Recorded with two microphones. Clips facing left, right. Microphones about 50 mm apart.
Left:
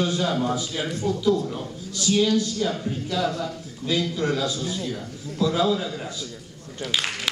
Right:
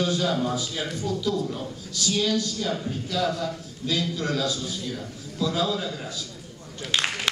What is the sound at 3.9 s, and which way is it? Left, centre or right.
Speech, left.